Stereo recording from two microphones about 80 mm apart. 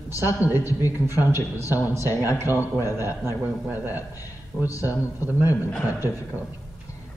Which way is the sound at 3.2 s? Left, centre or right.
Right.